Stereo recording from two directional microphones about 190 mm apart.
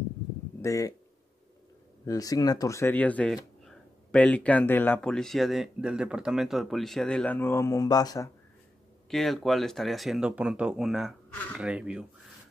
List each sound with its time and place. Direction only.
0.6 s speech: 15° left (ahead or behind)
2.0 s speech: 20° left (ahead or behind)
9.1 s speech: centre (ahead or behind)